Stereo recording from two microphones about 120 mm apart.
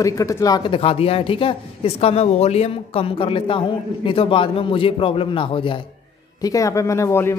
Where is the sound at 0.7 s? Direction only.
55° left (ahead or behind).